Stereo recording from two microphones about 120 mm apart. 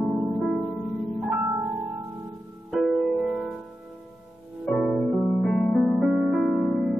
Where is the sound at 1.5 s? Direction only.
5° right (ahead or behind).